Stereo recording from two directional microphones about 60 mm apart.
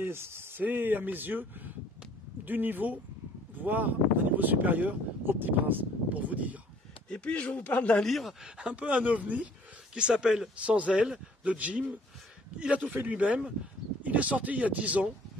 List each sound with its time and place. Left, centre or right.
0.0 s speech: right
7.1 s speech: centre
8.0 s speech: centre
8.5 s speech: centre
9.9 s speech: centre